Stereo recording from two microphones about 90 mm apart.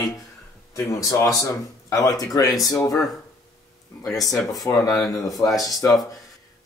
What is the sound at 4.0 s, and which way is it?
Speech, 5° left (ahead or behind).